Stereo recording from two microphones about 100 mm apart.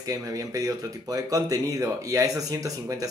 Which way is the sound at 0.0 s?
35° right (ahead or behind).